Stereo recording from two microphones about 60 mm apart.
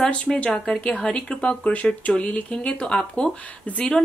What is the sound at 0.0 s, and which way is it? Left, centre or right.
Speech, centre.